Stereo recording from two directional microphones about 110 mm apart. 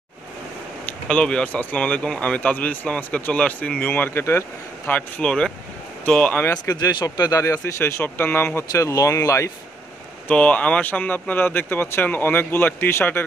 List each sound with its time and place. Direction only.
1.0 s speech: 10° left (ahead or behind)
6.5 s speech: 35° left (ahead or behind)
10.2 s speech: 10° left (ahead or behind)